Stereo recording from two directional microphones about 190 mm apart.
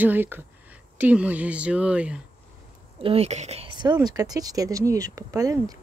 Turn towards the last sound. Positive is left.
turn(degrees=-15)  # may be behind; listen again after turning